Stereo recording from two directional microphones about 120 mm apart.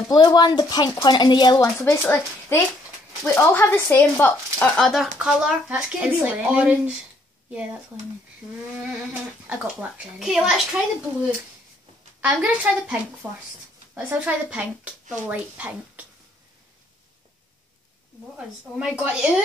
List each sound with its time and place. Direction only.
0.1 s speech: 35° left (ahead or behind); by 4.6 s 15° left (ahead or behind)
4.7 s speech: centre (ahead or behind)
9.1 s speech: 10° right (ahead or behind)
12.2 s speech: 10° right (ahead or behind)
18.8 s speech: 10° right (ahead or behind)